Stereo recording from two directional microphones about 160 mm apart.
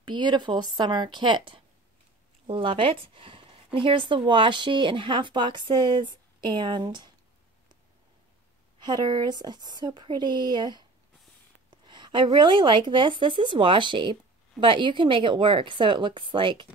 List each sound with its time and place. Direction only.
0.0 s speech: 30° right (ahead or behind)
8.7 s a woman's voice: 25° right (ahead or behind)